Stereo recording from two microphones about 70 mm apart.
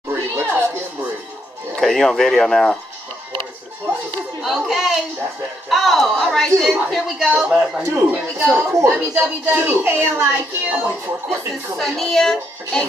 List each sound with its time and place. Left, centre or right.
0.1 s a sound: right
1.8 s speech: centre
4.4 s a woman's voice: centre
7.8 s speech: right
8.5 s speech: right
11.8 s speech: centre